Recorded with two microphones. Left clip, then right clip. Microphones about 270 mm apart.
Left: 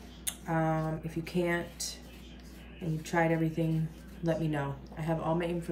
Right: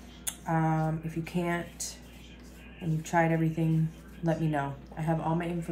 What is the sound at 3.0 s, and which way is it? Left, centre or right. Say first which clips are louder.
Speech: right 2 dB; centre.